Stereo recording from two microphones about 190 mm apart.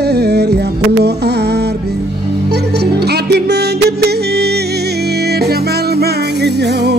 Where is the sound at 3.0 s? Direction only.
60° right (ahead or behind).